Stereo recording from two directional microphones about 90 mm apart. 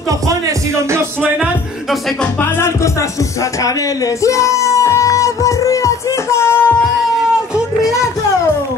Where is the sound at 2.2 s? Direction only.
20° left (ahead or behind).